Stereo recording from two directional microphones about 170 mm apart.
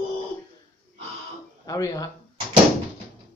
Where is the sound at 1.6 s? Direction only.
20° left (ahead or behind).